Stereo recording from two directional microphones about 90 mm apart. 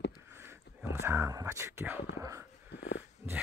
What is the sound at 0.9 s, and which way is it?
Speech, 30° right (ahead or behind).